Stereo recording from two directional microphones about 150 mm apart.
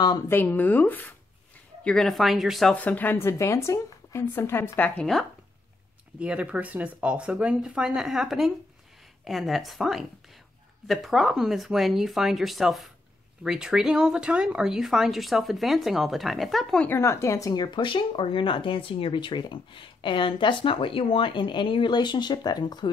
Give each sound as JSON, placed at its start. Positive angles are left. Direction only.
{"t": 0.3, "sound": "speech", "side_deg": 15}
{"t": 6.1, "sound": "speech", "side_deg": -10}